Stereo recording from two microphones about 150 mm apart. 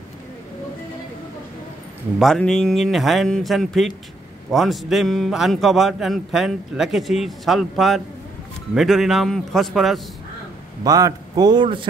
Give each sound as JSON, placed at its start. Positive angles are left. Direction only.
{"t": 2.1, "sound": "a man's voice", "side_deg": 5}
{"t": 10.8, "sound": "a man's voice", "side_deg": -25}